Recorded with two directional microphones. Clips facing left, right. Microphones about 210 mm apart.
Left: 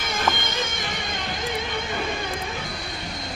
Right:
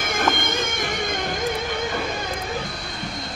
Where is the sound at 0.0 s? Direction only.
50° right (ahead or behind).